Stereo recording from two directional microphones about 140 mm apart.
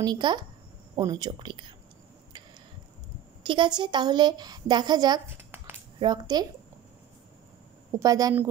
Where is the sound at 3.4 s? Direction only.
35° right (ahead or behind).